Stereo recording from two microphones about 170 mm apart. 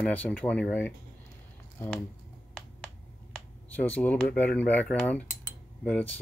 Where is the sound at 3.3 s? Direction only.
5° left (ahead or behind).